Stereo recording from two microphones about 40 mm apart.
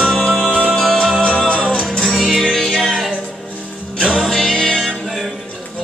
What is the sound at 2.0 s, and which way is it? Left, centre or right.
Music, centre.